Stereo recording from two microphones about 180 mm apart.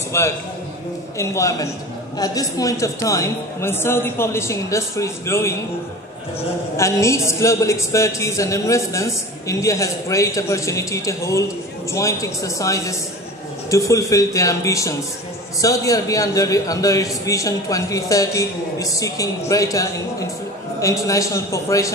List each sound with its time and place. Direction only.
0.1 s a woman's voice: 15° left (ahead or behind)
6.8 s a woman's voice: 15° left (ahead or behind)